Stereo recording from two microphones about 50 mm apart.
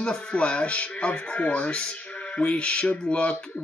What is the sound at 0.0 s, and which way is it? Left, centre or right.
Speech, centre.